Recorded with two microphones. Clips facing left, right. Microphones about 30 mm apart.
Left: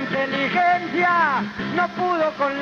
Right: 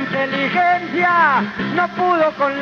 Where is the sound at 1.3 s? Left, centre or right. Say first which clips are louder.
Right 6 dB; right.